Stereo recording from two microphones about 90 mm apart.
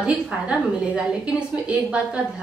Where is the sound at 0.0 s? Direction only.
10° right (ahead or behind).